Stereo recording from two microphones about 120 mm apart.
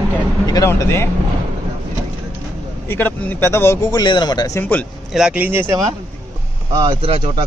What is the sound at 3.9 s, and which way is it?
Speech, 35° left (ahead or behind).